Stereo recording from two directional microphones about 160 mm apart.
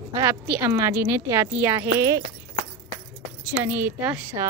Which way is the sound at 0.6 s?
15° right (ahead or behind).